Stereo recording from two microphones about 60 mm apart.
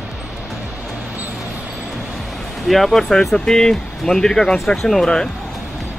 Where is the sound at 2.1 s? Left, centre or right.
Centre.